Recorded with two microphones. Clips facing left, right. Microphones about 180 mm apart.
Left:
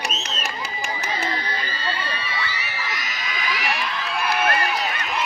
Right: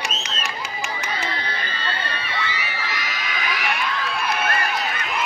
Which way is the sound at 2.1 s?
55° right (ahead or behind).